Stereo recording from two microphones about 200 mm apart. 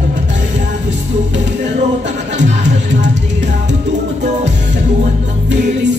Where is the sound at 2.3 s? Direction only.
60° right (ahead or behind).